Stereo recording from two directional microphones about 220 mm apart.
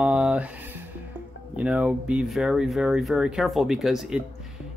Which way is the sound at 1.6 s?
5° right (ahead or behind).